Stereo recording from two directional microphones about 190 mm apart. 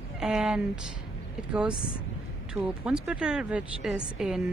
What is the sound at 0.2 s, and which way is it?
Speech, centre (ahead or behind).